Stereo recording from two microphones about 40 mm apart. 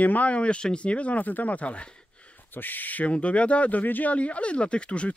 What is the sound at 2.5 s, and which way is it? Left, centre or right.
Speech, left.